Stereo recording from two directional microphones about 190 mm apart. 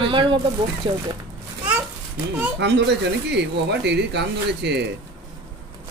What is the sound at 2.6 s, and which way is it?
Speech, 65° right (ahead or behind).